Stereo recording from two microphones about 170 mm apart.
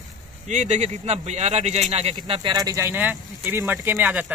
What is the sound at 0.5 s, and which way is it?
Speech, 45° right (ahead or behind).